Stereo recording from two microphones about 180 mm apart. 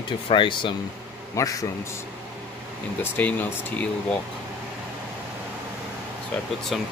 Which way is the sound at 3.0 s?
10° left (ahead or behind).